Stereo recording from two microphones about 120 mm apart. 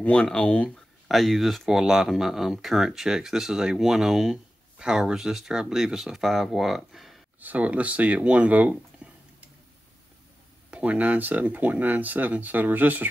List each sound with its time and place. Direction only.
0.0 s speech: 10° left (ahead or behind)
0.7 s speech: centre (ahead or behind)
7.3 s speech: 15° right (ahead or behind)
10.7 s speech: 10° right (ahead or behind)